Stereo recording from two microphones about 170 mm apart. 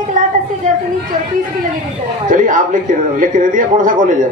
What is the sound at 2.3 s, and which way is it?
A man's voice, 50° right (ahead or behind).